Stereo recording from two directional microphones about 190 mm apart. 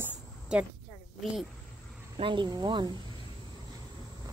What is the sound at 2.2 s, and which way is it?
Speech, 25° right (ahead or behind).